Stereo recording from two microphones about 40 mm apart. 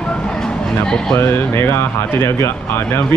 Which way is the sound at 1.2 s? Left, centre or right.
Left.